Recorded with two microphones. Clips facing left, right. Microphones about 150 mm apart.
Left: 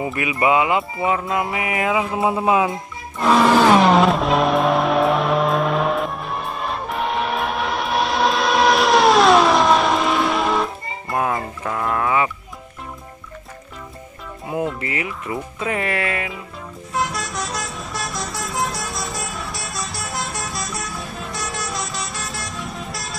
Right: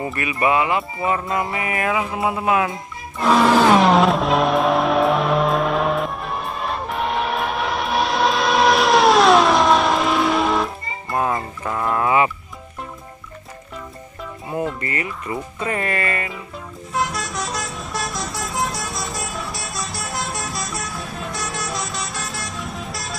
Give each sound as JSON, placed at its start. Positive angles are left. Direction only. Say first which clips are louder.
{"t": 0.0, "sound": "music", "louder": "left 1 dB", "side_deg": 15}
{"t": 1.0, "sound": "music", "louder": "right 1 dB", "side_deg": 5}
{"t": 3.2, "sound": "music", "louder": "even", "side_deg": 0}
{"t": 14.5, "sound": "music", "louder": "left 1 dB", "side_deg": 5}
{"t": 15.0, "sound": "speech", "louder": "even", "side_deg": 5}
{"t": 16.9, "sound": "vehicle", "louder": "even", "side_deg": 0}